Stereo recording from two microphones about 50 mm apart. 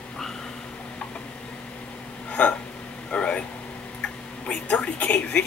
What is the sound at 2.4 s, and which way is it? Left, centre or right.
Hiccup, left.